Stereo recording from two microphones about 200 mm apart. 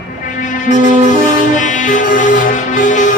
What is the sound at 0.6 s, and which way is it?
Music, 40° left (ahead or behind).